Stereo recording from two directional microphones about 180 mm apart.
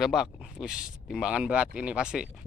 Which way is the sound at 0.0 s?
Centre (ahead or behind).